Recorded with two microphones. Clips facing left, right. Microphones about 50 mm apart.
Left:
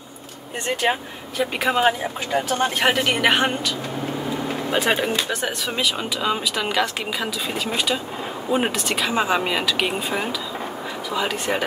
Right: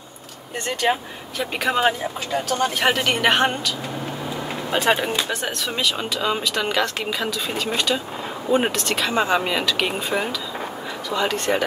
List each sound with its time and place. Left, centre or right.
1.4 s speech: centre
2.3 s speech: left
2.8 s speech: centre